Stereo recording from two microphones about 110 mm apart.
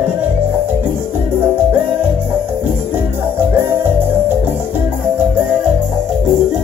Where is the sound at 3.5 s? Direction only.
20° right (ahead or behind).